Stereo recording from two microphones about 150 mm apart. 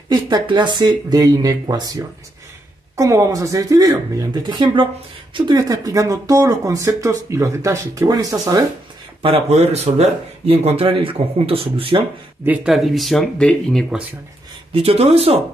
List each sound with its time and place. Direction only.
0.1 s speech: 30° right (ahead or behind)
9.2 s speech: 40° right (ahead or behind)
12.4 s speech: centre (ahead or behind)
14.7 s speech: 40° right (ahead or behind)